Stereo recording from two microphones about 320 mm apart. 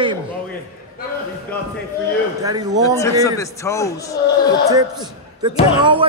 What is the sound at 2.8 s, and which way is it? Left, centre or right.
A man's voice, centre.